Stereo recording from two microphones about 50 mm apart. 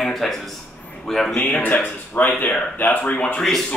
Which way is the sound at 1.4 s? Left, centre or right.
Left.